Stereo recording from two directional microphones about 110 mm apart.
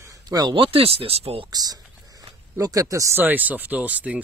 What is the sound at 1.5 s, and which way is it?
Typing, 35° right (ahead or behind).